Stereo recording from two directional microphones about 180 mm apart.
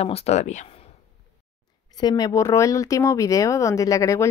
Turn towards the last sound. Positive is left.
turn(degrees=20)  # may be behind; listen again after turning